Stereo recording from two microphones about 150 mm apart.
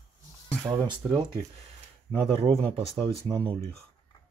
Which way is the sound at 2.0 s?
35° right (ahead or behind).